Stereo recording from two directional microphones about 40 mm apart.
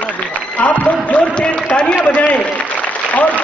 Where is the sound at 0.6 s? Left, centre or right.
Left.